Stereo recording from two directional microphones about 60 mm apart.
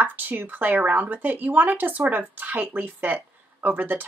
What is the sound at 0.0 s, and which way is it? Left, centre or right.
Speech, right.